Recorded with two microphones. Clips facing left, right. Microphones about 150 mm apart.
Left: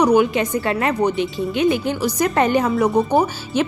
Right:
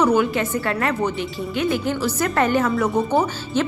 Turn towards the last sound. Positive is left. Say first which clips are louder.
# left 2 dB
turn(degrees=15)  # may be behind; listen again after turning